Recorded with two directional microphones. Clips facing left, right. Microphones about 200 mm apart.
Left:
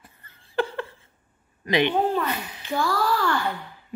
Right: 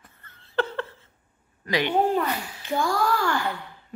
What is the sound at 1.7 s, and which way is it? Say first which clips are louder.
A woman's voice: left 1 dB; 20° left (ahead or behind).